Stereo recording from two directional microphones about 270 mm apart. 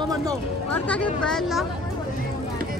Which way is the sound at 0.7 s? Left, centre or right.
Centre.